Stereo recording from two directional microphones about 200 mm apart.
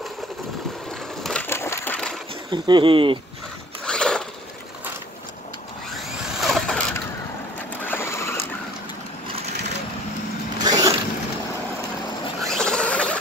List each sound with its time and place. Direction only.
1.2 s crushing: 5° left (ahead or behind)
2.5 s speech: 25° right (ahead or behind)
3.8 s zipper: 5° left (ahead or behind)
5.9 s vehicle: centre (ahead or behind)
7.8 s sewing machine: 10° left (ahead or behind)
9.3 s crushing: 35° right (ahead or behind)
10.6 s a sound: 20° right (ahead or behind)
12.4 s a sound: centre (ahead or behind)